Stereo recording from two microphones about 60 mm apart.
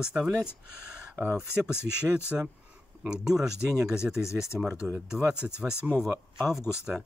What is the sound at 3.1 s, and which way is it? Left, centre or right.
Speech, centre.